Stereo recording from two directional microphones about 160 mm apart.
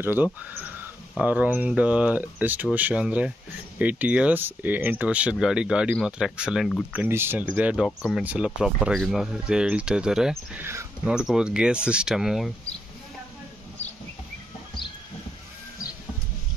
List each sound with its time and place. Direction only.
0.0 s speech: 10° right (ahead or behind)
10.6 s speech: 15° right (ahead or behind)
11.1 s speech: 5° right (ahead or behind)